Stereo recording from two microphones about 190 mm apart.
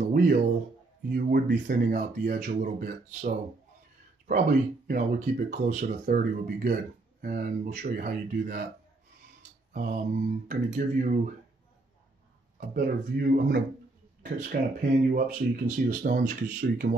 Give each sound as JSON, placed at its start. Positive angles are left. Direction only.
{"t": 0.0, "sound": "a sound", "side_deg": -45}
{"t": 1.0, "sound": "speech", "side_deg": -55}
{"t": 9.7, "sound": "speech", "side_deg": -40}
{"t": 12.5, "sound": "speech", "side_deg": -50}